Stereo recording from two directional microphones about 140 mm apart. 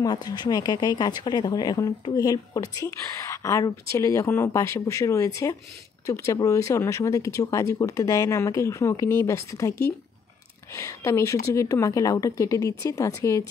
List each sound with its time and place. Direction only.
0.0 s speech: 30° left (ahead or behind)